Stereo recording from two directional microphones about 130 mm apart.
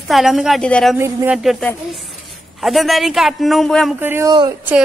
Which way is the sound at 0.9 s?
15° right (ahead or behind).